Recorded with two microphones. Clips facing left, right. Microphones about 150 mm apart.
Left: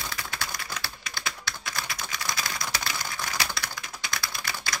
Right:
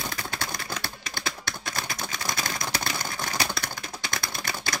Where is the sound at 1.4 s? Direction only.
50° right (ahead or behind).